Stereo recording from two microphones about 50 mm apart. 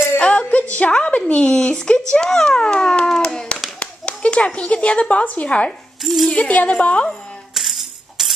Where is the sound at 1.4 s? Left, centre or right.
Centre.